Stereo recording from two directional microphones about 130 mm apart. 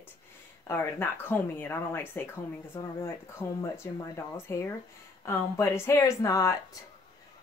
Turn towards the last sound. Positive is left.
turn(degrees=25)  # may be behind; listen again after turning